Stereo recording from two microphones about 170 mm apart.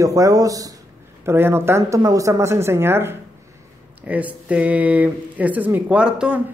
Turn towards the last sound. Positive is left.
turn(degrees=-5)  # may be behind; listen again after turning